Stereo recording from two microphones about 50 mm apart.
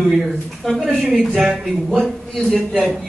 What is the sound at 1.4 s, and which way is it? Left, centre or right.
Speech, centre.